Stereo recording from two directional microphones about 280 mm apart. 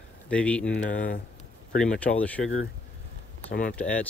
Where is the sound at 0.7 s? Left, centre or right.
Left.